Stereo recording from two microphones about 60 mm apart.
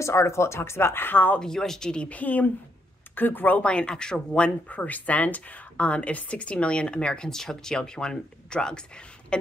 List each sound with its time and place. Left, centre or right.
0.0 s speech: left
1.4 s speech: centre; by 3.6 s left
3.6 s speech: centre